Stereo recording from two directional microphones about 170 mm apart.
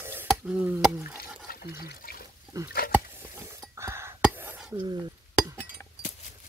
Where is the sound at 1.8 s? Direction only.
60° left (ahead or behind).